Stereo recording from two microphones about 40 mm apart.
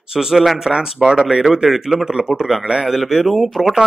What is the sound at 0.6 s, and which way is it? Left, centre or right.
Speech, centre.